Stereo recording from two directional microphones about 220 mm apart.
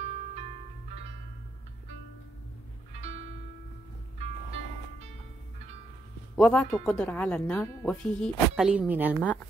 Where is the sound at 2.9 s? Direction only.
30° right (ahead or behind).